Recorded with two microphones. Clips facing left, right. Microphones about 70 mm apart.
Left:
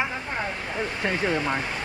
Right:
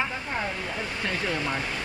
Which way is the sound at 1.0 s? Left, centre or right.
Centre.